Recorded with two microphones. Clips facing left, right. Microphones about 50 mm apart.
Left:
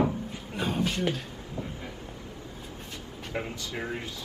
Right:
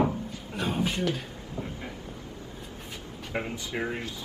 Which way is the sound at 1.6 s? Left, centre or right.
Right.